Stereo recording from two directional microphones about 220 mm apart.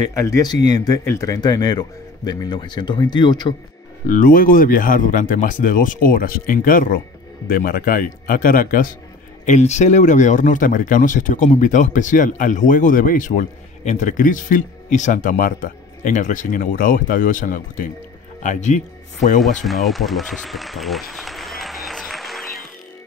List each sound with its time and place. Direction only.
0.0 s speech: 15° left (ahead or behind)
4.0 s speech: 40° left (ahead or behind)
19.6 s applause: centre (ahead or behind)